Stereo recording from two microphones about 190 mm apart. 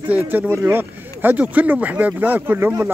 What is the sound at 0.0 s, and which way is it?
Speech, 10° right (ahead or behind).